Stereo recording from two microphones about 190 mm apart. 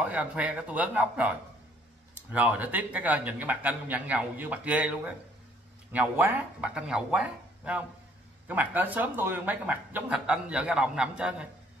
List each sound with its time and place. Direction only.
0.0 s speech: 5° right (ahead or behind)
2.3 s speech: 10° right (ahead or behind)